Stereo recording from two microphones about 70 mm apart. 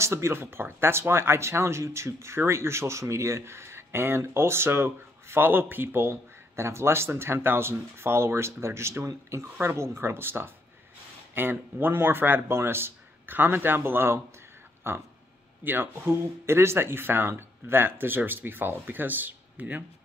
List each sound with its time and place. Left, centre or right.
0.0 s speech: right